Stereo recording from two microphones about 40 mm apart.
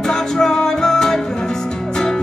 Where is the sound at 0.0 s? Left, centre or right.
Centre.